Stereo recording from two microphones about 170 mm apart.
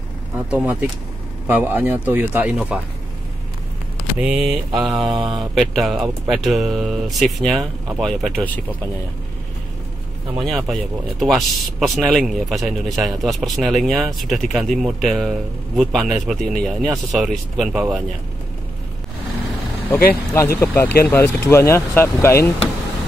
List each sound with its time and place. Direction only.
0.5 s speech: 5° right (ahead or behind)
4.2 s speech: 5° right (ahead or behind)
5.1 s speech: 25° right (ahead or behind)
5.5 s speech: centre (ahead or behind)
10.3 s speech: centre (ahead or behind)
20.3 s speech: 15° left (ahead or behind)